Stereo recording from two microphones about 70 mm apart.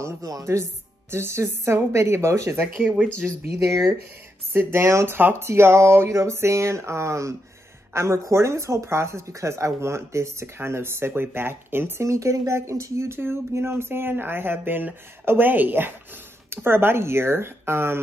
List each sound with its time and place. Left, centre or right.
0.0 s speech: right
4.5 s speech: right
12.1 s speech: right